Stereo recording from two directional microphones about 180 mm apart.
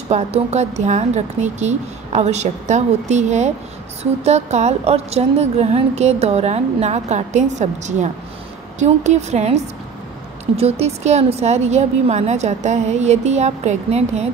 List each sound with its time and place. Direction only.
0.1 s a woman's voice: 40° right (ahead or behind)